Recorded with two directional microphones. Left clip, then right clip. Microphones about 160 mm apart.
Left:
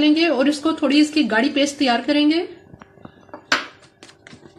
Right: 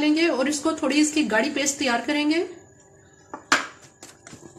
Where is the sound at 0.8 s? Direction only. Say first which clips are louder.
Left 4 dB; 50° left (ahead or behind).